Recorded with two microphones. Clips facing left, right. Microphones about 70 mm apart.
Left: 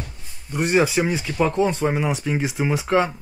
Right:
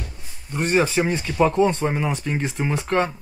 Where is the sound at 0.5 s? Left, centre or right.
Centre.